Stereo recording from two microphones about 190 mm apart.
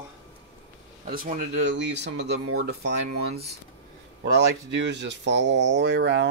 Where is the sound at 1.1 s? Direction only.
45° right (ahead or behind).